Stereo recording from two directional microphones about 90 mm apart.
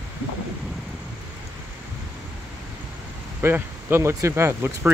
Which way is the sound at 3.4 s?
25° right (ahead or behind).